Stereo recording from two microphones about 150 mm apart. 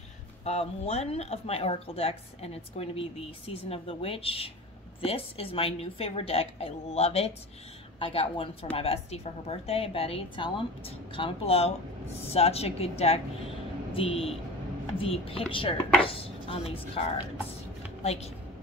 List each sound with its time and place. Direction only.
0.4 s a woman's voice: 45° left (ahead or behind)
18.0 s a woman's voice: 45° left (ahead or behind)